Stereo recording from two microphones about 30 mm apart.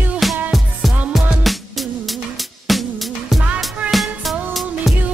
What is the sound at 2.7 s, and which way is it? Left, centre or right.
Music, centre.